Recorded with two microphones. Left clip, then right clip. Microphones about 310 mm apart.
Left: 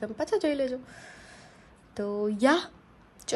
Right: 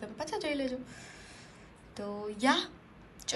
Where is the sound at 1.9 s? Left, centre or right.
Left.